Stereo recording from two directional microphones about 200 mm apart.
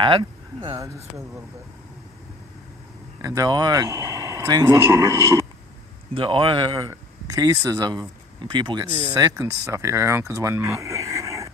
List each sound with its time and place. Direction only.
0.0 s speech: 25° right (ahead or behind)
3.2 s speech: 15° right (ahead or behind)
6.1 s speech: 25° right (ahead or behind)